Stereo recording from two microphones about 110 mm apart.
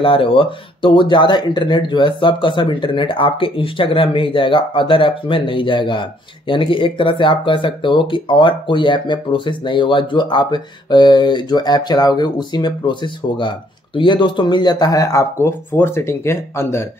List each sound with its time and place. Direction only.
0.0 s speech: 55° left (ahead or behind); by 16.8 s 25° left (ahead or behind)